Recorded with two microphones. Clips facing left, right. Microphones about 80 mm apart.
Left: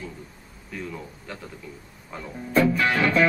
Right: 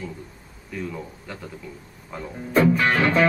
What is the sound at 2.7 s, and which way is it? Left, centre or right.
Music, right.